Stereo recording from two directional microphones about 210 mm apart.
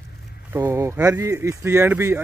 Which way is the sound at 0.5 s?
15° right (ahead or behind).